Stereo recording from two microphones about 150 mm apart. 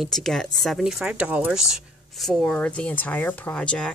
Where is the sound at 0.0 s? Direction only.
Centre (ahead or behind).